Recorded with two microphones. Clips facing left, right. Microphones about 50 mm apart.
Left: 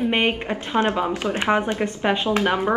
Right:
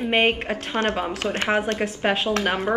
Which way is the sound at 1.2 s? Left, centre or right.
Centre.